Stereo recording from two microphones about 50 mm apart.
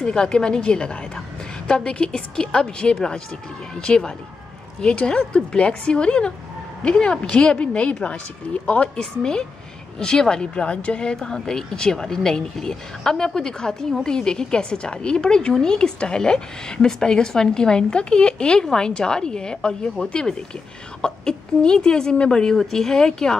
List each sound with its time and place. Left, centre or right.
0.0 s a woman's voice: centre